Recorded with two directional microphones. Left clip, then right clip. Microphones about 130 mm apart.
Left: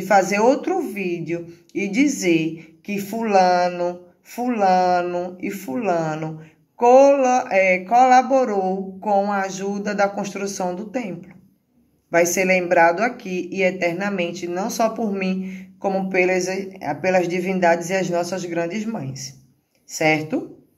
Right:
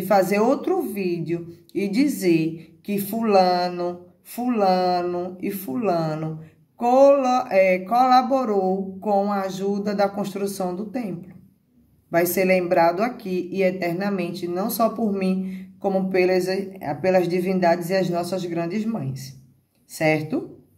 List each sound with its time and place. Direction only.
0.0 s speech: 20° right (ahead or behind)